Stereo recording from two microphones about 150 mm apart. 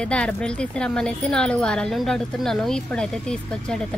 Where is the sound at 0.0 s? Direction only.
5° left (ahead or behind).